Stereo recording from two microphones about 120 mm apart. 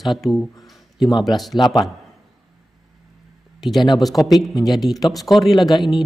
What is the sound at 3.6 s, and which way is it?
Speech, centre (ahead or behind).